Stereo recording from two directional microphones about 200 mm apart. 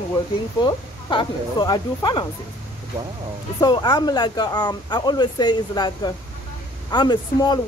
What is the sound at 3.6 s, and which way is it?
Speech, 20° left (ahead or behind).